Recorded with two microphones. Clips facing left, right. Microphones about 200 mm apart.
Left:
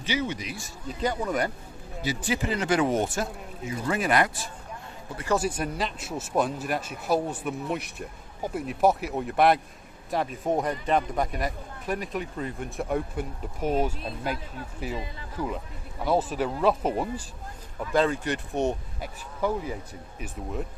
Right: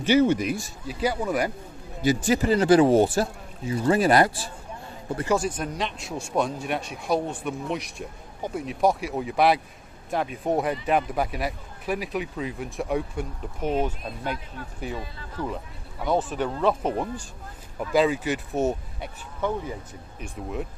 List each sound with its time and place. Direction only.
0.0 s speech: 50° right (ahead or behind)
0.8 s speech: 5° right (ahead or behind)
2.0 s speech: 45° right (ahead or behind)
5.4 s a man's voice: 5° left (ahead or behind)
17.7 s a man's voice: 5° right (ahead or behind)